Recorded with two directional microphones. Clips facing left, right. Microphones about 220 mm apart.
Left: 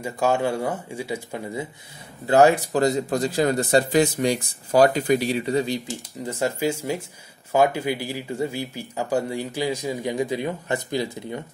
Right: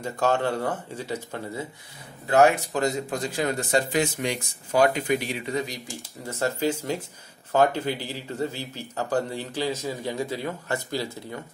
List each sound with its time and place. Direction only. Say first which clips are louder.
0.0 s speech: left 2 dB; 10° left (ahead or behind)
2.2 s speech: left 3 dB; 30° left (ahead or behind)
6.2 s speech: left 2 dB; 15° left (ahead or behind)